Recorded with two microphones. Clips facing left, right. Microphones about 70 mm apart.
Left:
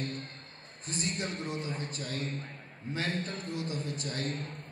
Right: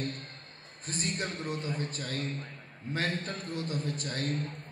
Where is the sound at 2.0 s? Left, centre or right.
Right.